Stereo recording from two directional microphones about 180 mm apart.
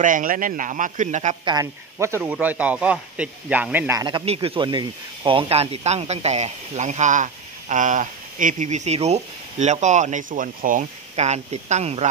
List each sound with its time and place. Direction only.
0.0 s a man's voice: 50° right (ahead or behind)
1.4 s a man's voice: 20° right (ahead or behind)
4.0 s speech: 30° right (ahead or behind)